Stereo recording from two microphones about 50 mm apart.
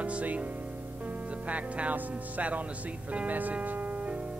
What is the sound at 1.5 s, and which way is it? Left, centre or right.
Speech, right.